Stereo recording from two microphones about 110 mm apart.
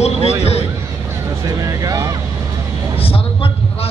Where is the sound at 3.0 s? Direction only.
60° left (ahead or behind).